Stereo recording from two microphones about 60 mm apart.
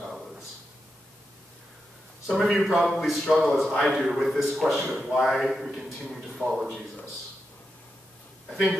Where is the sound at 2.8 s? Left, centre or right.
Centre.